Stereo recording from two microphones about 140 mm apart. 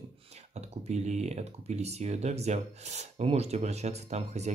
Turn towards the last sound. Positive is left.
turn(degrees=-50)  # may be behind; listen again after turning